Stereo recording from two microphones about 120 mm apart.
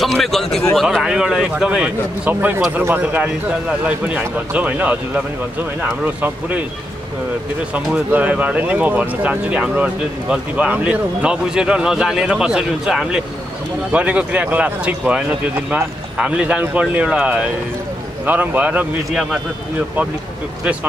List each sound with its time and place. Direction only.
0.0 s a man's voice: centre (ahead or behind); by 6.6 s 15° right (ahead or behind)
7.7 s a man's voice: 10° right (ahead or behind)